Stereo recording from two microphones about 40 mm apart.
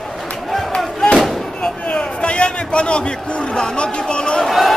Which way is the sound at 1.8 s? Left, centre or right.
Left.